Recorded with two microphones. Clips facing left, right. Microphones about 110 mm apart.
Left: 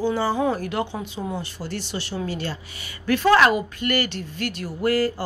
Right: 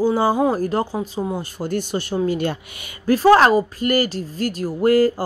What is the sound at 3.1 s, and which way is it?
Speech, 35° right (ahead or behind).